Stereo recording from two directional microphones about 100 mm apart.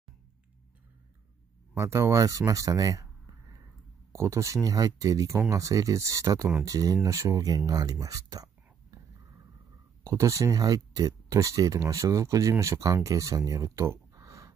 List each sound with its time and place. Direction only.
1.8 s speech: 30° right (ahead or behind)
4.1 s speech: 30° right (ahead or behind)
10.0 s speech: 30° right (ahead or behind)